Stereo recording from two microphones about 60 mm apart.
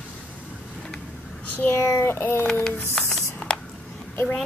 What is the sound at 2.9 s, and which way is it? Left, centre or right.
Music, centre.